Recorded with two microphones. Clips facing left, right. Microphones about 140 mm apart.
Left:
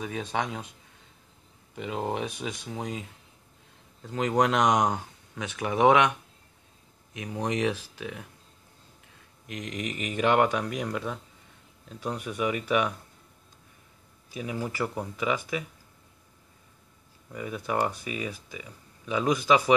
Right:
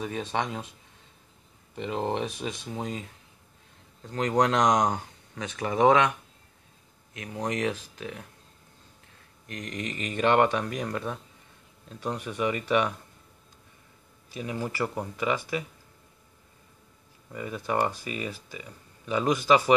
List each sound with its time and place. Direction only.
0.0 s speech: centre (ahead or behind)
1.8 s speech: 5° left (ahead or behind)
4.1 s speech: 5° left (ahead or behind)
7.2 s speech: 15° left (ahead or behind)
9.5 s speech: 10° left (ahead or behind)
14.3 s speech: 5° left (ahead or behind)
17.3 s speech: centre (ahead or behind)